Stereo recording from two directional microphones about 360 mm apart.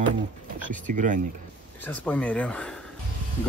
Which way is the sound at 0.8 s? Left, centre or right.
Right.